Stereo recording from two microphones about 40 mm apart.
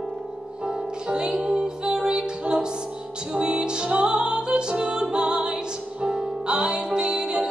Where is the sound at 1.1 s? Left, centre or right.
Right.